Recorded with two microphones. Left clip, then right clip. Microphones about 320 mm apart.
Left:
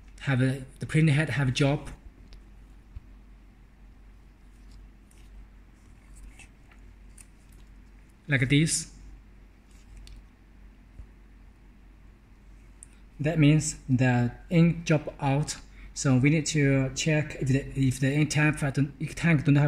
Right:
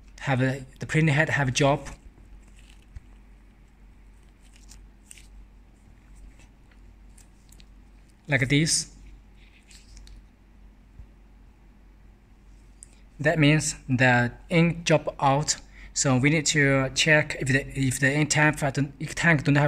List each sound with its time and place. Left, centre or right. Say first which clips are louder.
0.1 s speech: right 3 dB; centre
8.3 s speech: right 2 dB; centre
13.2 s speech: right 4 dB; right